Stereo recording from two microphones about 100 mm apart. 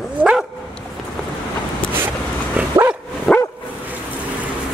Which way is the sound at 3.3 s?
5° left (ahead or behind).